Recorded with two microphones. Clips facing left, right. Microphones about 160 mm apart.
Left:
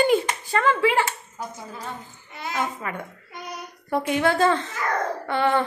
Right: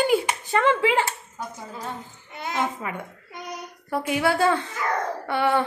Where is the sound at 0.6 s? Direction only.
20° right (ahead or behind).